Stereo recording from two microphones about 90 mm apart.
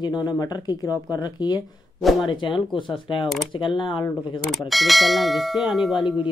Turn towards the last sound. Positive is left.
turn(degrees=0)  # may be behind; listen again after turning